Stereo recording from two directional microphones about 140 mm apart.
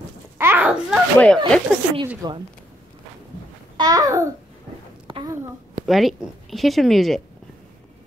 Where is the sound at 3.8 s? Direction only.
25° right (ahead or behind).